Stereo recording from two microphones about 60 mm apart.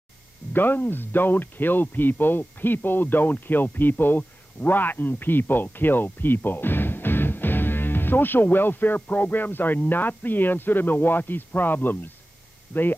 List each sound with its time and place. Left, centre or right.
0.5 s speech: left